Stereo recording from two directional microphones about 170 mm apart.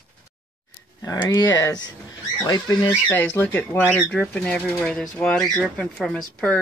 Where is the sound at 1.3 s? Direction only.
20° left (ahead or behind).